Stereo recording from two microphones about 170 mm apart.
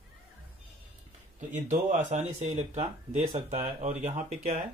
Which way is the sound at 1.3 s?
45° right (ahead or behind).